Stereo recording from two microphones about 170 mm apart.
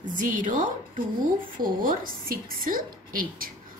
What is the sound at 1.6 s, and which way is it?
A woman's voice, 55° right (ahead or behind).